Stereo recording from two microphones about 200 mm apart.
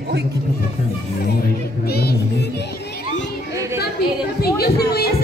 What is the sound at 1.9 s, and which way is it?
Music, 50° left (ahead or behind).